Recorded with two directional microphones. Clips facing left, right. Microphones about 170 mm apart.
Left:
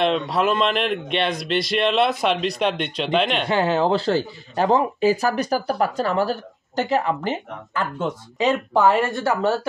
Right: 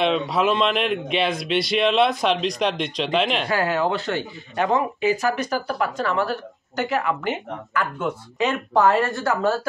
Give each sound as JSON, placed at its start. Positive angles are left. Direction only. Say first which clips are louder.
{"t": 0.0, "sound": "speech", "louder": "even", "side_deg": 0}
{"t": 3.4, "sound": "speech", "louder": "left 2 dB", "side_deg": 25}
{"t": 9.0, "sound": "speech", "louder": "left 1 dB", "side_deg": 15}